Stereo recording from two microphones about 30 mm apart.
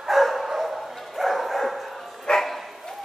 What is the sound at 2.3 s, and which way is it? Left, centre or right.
Bow-wow, centre.